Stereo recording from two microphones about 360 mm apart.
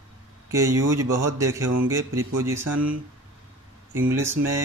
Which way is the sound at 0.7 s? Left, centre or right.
Right.